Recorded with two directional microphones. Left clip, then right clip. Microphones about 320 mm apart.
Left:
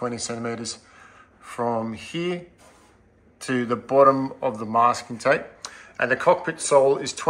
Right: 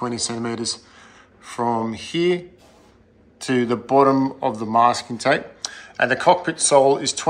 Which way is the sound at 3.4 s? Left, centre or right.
Centre.